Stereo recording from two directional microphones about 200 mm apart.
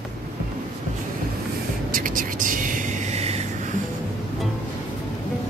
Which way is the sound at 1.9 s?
45° right (ahead or behind).